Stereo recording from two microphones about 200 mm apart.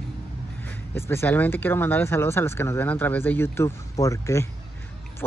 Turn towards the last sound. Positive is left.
turn(degrees=15)  # may be behind; listen again after turning